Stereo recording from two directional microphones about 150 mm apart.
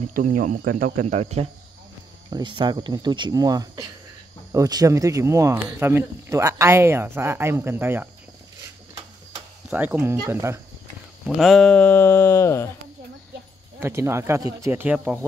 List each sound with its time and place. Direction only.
0.1 s speech: 60° right (ahead or behind)
1.0 s cricket: 45° right (ahead or behind)
2.3 s speech: 30° right (ahead or behind); by 8.1 s 15° right (ahead or behind)
9.7 s speech: 10° right (ahead or behind)
11.2 s speech: centre (ahead or behind); by 12.6 s 20° left (ahead or behind)
13.7 s speech: 20° right (ahead or behind)